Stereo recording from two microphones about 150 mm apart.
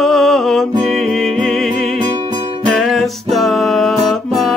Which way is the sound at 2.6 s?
Centre (ahead or behind).